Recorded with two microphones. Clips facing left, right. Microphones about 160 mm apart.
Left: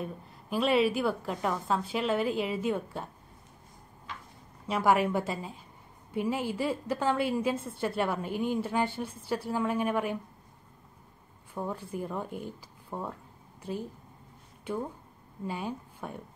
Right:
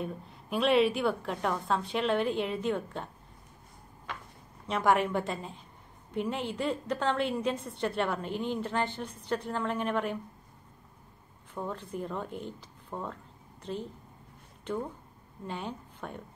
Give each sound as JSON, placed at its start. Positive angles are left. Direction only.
{"t": 0.0, "sound": "a woman's voice", "side_deg": 0}
{"t": 4.1, "sound": "a sound", "side_deg": -60}
{"t": 4.6, "sound": "a woman's voice", "side_deg": 5}
{"t": 11.5, "sound": "a woman's voice", "side_deg": 10}